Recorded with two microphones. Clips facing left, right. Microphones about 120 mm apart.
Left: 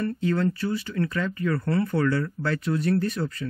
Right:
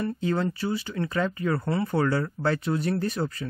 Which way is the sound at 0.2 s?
30° right (ahead or behind).